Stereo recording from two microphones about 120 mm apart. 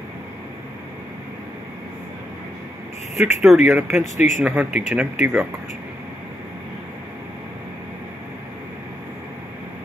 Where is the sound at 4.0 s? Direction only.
80° left.